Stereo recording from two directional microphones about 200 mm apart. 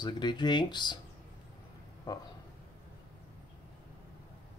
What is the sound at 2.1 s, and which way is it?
Speech, 20° left (ahead or behind).